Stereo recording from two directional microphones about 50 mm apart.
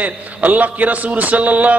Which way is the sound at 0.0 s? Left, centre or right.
Right.